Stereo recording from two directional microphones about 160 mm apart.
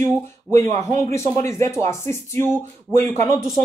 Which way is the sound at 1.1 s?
15° left (ahead or behind).